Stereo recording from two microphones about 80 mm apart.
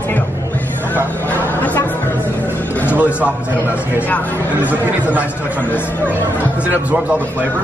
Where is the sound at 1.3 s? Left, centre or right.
Left.